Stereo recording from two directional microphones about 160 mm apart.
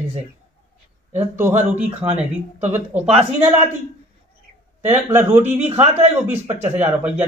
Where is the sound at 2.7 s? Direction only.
10° right (ahead or behind).